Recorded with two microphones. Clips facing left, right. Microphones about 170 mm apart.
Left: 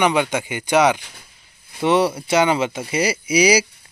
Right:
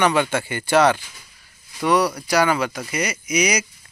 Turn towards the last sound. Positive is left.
turn(degrees=30)  # may be behind; listen again after turning